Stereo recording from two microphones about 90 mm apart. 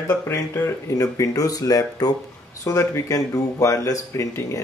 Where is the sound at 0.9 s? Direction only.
40° left (ahead or behind).